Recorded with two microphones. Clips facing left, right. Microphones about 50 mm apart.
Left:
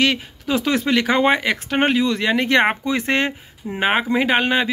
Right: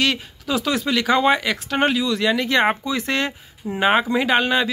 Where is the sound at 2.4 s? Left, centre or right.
Left.